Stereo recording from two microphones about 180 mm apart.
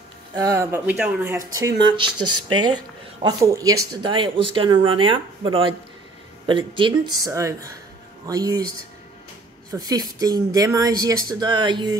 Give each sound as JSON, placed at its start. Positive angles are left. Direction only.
{"t": 0.3, "sound": "speech", "side_deg": -20}
{"t": 1.3, "sound": "speech", "side_deg": -20}
{"t": 3.2, "sound": "speech", "side_deg": -20}
{"t": 9.7, "sound": "speech", "side_deg": -20}